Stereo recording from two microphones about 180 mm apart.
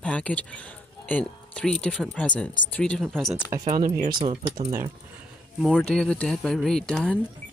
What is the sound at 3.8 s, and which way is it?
Speech, 55° right (ahead or behind).